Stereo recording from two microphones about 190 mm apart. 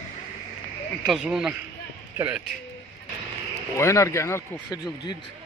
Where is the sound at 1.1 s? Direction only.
5° right (ahead or behind).